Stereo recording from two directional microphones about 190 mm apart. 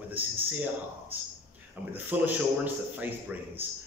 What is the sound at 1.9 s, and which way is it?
A man's voice, 10° right (ahead or behind).